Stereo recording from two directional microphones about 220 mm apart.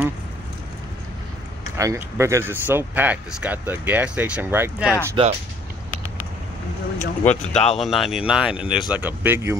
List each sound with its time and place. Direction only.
1.8 s speech: 15° right (ahead or behind)
5.2 s speech: 25° right (ahead or behind)
7.0 s speech: 30° left (ahead or behind)
7.8 s speech: centre (ahead or behind)